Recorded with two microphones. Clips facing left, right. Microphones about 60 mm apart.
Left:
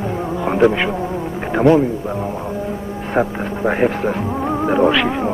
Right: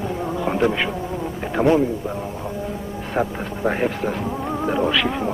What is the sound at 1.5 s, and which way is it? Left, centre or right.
Speech, left.